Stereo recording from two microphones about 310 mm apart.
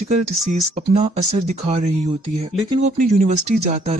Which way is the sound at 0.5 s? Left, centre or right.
Right.